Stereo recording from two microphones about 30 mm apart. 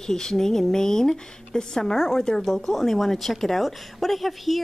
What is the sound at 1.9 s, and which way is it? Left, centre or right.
Speech, centre.